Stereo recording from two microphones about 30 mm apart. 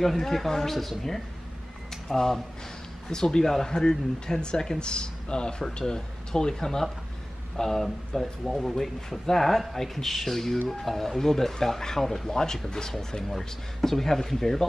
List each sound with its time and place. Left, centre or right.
0.0 s speech: centre
13.3 s speech: centre